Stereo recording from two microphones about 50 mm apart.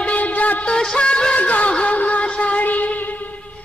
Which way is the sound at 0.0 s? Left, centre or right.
Left.